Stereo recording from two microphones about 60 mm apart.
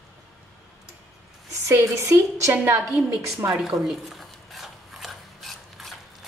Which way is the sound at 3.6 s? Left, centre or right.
Centre.